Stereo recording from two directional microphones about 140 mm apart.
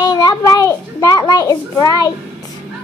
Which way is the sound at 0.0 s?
25° left (ahead or behind).